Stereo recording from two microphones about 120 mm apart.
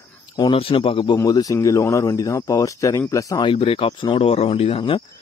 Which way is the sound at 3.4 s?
45° left (ahead or behind).